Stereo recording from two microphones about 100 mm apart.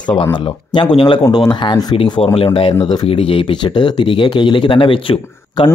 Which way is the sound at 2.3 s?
70° left (ahead or behind).